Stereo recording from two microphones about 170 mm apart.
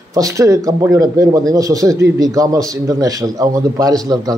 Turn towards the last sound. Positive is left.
turn(degrees=-20)  # may be behind; listen again after turning